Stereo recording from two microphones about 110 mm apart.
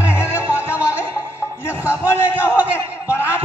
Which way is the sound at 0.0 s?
25° left (ahead or behind).